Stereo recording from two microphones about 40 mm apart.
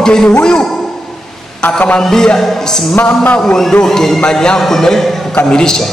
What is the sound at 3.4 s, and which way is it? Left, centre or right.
A man's voice, centre.